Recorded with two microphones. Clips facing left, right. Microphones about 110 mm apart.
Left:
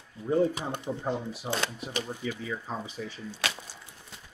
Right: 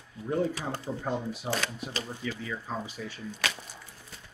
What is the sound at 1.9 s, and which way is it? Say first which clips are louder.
Speech: left 2 dB; 20° left (ahead or behind).